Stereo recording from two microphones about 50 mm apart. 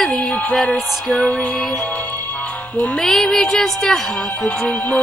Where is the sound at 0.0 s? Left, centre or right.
Centre.